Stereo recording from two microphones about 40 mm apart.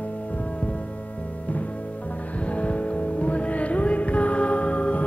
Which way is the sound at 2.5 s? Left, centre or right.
Left.